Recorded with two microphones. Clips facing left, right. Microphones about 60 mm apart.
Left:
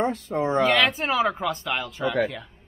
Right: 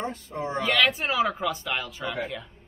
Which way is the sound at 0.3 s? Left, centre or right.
Left.